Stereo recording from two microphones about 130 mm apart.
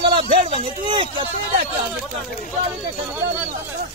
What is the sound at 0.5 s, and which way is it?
Speech, 40° right (ahead or behind).